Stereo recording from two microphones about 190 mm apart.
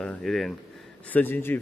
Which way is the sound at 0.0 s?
5° left (ahead or behind).